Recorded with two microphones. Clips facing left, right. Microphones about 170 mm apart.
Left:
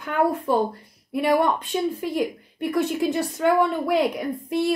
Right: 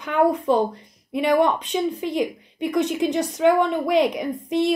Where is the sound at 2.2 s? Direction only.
Centre (ahead or behind).